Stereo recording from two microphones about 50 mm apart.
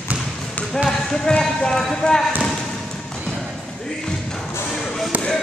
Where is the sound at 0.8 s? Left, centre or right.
Centre.